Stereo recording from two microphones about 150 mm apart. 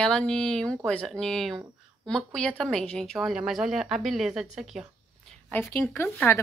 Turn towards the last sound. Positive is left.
turn(degrees=15)  # may be behind; listen again after turning